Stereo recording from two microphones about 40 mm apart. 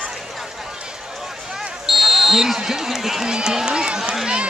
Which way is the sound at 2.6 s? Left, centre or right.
Centre.